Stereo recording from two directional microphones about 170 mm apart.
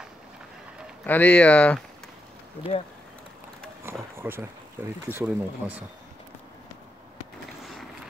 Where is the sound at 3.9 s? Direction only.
15° right (ahead or behind).